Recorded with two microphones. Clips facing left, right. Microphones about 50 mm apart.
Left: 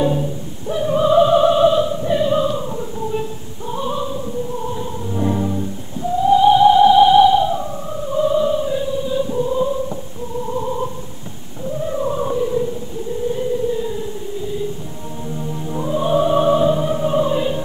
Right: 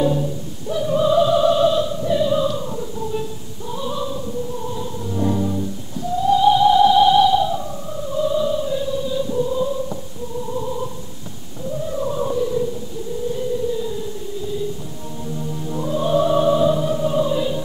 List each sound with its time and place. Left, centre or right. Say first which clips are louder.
0.0 s opera: left 1 dB; left
4.7 s music: left 1 dB; left
11.8 s music: left 2 dB; left
13.3 s a sound: left 2 dB; left
15.7 s opera: left 1 dB; left